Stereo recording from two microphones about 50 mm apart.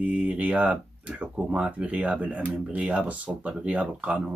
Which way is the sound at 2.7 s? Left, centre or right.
Right.